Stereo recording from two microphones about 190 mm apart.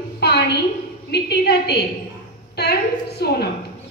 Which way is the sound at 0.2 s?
60° left (ahead or behind).